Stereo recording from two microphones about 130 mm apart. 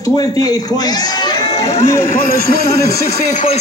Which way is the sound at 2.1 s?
90° left.